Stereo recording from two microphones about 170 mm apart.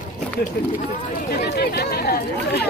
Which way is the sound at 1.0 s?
55° left (ahead or behind).